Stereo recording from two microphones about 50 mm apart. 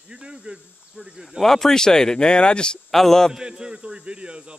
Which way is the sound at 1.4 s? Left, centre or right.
Centre.